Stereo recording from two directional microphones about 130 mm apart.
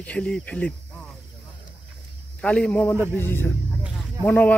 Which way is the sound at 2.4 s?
10° left (ahead or behind).